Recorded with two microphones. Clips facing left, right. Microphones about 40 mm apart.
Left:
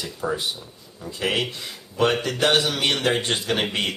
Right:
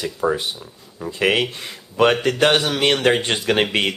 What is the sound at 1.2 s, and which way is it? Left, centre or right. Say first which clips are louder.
Speech: right 5 dB; right.